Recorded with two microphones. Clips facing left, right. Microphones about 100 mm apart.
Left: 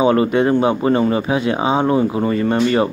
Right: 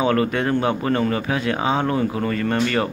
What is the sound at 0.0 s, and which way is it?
Speech, 15° left (ahead or behind).